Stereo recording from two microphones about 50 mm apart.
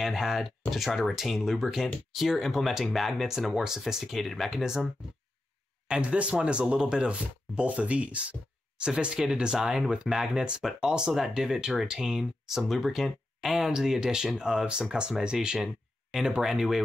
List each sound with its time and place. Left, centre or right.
0.0 s speech: centre
5.9 s speech: right; by 16.8 s centre